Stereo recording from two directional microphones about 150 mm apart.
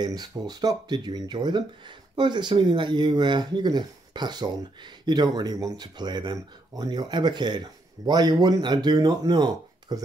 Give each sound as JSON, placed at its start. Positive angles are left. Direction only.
{"t": 0.0, "sound": "speech", "side_deg": -25}